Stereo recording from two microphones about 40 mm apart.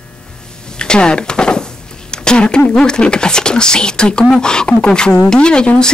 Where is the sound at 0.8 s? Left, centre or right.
Left.